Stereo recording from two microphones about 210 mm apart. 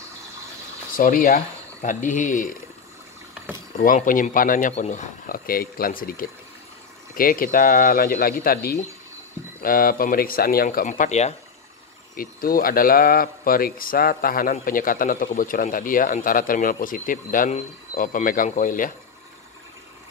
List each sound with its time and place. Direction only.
0.9 s speech: 40° left (ahead or behind)
3.7 s speech: 40° left (ahead or behind)
12.2 s speech: 45° left (ahead or behind)